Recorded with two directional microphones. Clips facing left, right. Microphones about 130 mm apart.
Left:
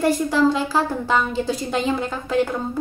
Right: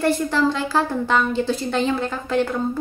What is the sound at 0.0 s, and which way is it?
Speech, 10° left (ahead or behind).